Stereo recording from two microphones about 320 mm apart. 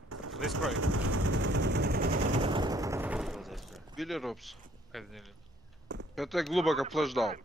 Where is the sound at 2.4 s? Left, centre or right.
Centre.